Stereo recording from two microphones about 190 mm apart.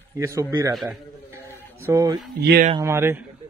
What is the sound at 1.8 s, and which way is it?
Speech, 15° right (ahead or behind).